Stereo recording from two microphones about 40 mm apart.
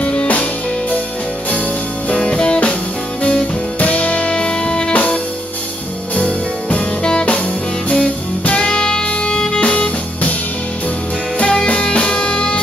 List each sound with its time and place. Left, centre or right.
0.0 s music: left
2.1 s music: left
3.8 s music: left; by 4.9 s centre
4.9 s music: left
8.6 s music: left
9.6 s music: left
11.3 s music: left